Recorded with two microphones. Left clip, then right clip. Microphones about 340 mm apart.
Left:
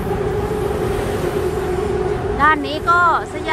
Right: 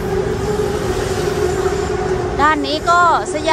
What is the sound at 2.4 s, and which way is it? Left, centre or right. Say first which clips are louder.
A woman's voice: even; centre.